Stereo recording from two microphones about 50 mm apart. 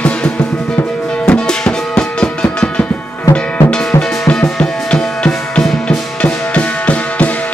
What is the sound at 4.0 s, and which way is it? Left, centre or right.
Music, centre.